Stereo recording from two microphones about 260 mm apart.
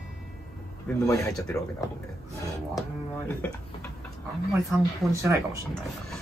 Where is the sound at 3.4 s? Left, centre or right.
Centre.